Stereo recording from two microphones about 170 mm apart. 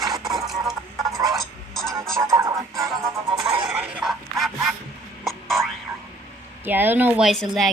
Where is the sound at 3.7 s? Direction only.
5° right (ahead or behind).